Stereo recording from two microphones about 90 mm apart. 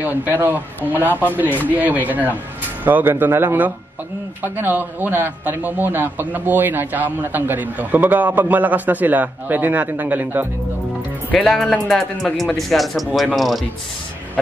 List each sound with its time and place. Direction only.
0.0 s a man's voice: 20° right (ahead or behind)
11.3 s speech: 5° left (ahead or behind)